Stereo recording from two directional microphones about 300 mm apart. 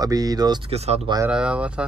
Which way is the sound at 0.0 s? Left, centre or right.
Centre.